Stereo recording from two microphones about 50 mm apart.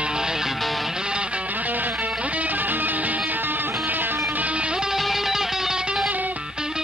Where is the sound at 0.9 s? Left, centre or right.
Centre.